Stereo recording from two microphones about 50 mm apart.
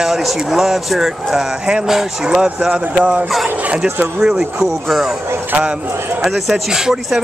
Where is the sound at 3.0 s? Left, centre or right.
Right.